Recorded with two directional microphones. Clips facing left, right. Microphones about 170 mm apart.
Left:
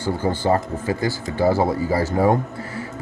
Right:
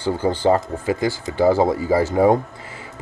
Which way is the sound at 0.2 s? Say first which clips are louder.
Right 3 dB; 15° right (ahead or behind).